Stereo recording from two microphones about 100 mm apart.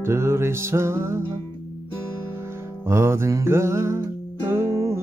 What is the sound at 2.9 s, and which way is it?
Music, 25° right (ahead or behind).